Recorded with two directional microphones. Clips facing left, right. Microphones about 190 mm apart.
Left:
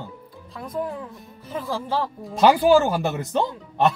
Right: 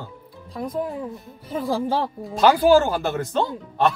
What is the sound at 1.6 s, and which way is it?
Speech, 15° right (ahead or behind).